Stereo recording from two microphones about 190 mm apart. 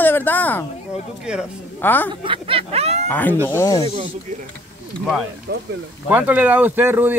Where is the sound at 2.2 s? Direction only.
30° right (ahead or behind).